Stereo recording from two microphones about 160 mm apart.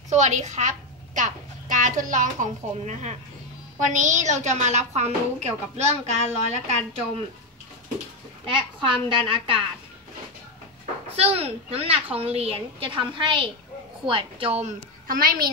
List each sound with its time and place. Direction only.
0.1 s a woman's voice: 45° right (ahead or behind)
8.5 s a woman's voice: 30° right (ahead or behind)
11.1 s a woman's voice: 40° right (ahead or behind)
15.0 s a child's voice: 65° right (ahead or behind)